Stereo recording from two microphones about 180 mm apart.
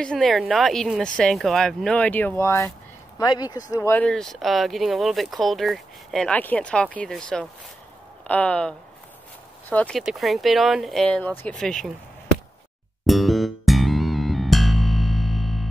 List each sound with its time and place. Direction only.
0.0 s speech: 5° left (ahead or behind)
13.0 s music: centre (ahead or behind)